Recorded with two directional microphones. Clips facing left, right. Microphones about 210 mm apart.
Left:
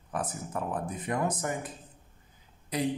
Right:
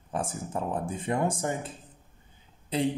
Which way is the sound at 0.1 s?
30° right (ahead or behind).